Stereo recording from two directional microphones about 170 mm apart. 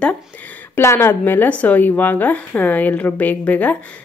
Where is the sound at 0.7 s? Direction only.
15° left (ahead or behind).